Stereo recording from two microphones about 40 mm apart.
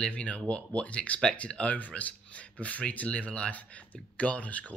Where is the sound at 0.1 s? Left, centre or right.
Left.